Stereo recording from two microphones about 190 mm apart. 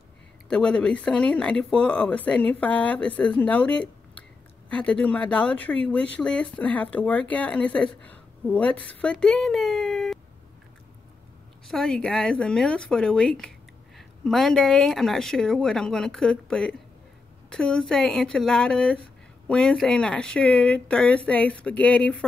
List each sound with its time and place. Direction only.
0.5 s speech: 5° left (ahead or behind)
11.6 s speech: centre (ahead or behind)